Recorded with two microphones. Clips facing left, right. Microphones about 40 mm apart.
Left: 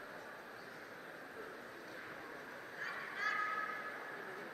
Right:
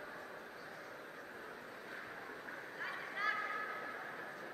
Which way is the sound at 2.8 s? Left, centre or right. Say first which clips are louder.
Even; centre.